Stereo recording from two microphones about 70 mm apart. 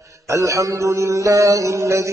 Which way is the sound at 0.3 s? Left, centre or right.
Right.